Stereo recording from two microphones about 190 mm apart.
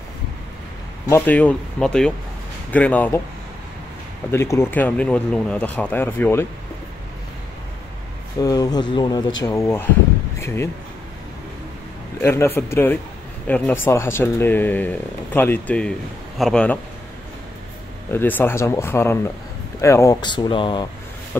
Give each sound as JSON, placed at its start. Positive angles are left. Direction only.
{"t": 1.0, "sound": "speech", "side_deg": 10}
{"t": 4.3, "sound": "speech", "side_deg": 15}
{"t": 8.4, "sound": "speech", "side_deg": 20}
{"t": 12.2, "sound": "speech", "side_deg": 15}
{"t": 18.1, "sound": "speech", "side_deg": 10}